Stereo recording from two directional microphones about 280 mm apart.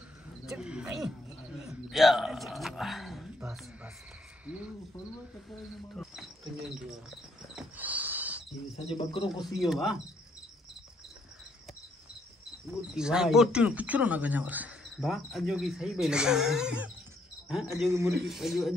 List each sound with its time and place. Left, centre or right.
0.5 s speech: centre
1.7 s a sound: centre
4.5 s speech: centre
7.5 s cricket: centre
8.9 s speech: centre
9.5 s speech: centre
12.9 s speech: centre